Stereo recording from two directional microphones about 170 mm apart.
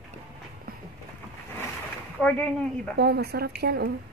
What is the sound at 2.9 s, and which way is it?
Speech, 75° right (ahead or behind).